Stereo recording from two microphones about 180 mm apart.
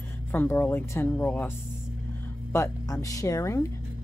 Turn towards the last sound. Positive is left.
turn(degrees=15)  # may be behind; listen again after turning